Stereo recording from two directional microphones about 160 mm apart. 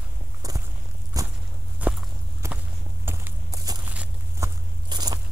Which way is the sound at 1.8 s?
10° right (ahead or behind).